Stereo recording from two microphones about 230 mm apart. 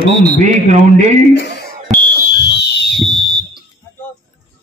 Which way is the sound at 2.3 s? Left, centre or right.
Left.